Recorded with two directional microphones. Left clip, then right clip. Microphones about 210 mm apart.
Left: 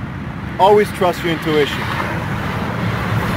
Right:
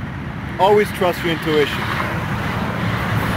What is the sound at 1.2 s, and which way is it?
Speech, 40° left (ahead or behind).